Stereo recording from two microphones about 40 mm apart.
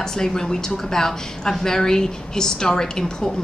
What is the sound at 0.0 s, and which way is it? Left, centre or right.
Speech, centre.